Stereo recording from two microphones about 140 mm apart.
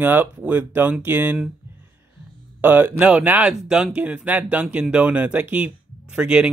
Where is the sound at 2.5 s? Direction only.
15° right (ahead or behind).